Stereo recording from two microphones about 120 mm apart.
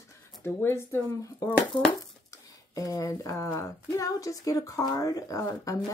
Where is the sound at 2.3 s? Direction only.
30° left (ahead or behind).